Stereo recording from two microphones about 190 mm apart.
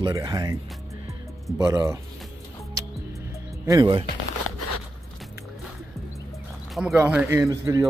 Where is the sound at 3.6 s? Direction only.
20° right (ahead or behind).